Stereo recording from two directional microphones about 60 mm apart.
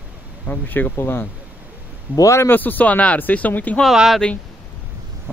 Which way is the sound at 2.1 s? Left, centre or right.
Right.